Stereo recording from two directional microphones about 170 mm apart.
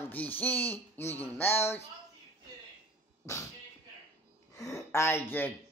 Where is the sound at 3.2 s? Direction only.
20° left (ahead or behind).